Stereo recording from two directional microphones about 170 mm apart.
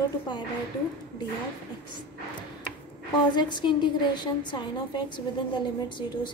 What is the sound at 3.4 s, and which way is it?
A woman's voice, 25° left (ahead or behind).